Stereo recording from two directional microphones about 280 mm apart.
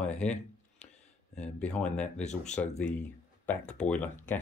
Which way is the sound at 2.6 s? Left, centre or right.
Left.